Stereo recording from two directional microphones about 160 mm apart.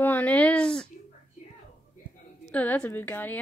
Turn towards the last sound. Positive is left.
turn(degrees=10)  # may be behind; listen again after turning